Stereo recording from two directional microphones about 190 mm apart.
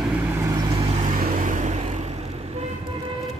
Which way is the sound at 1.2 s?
40° right (ahead or behind).